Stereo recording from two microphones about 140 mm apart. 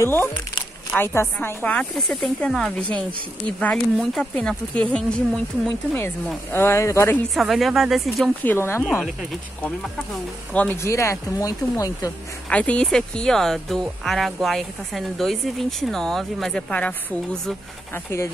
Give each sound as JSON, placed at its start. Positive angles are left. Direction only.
{"t": 0.0, "sound": "speech", "side_deg": 15}
{"t": 6.5, "sound": "speech", "side_deg": 15}
{"t": 7.3, "sound": "speech", "side_deg": 0}
{"t": 8.5, "sound": "speech", "side_deg": 15}
{"t": 10.5, "sound": "speech", "side_deg": 10}
{"t": 12.4, "sound": "speech", "side_deg": 10}